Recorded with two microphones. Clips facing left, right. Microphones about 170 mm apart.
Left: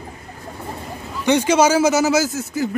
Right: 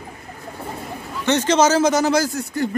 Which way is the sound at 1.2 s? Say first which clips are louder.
Left 1 dB; 10° left (ahead or behind).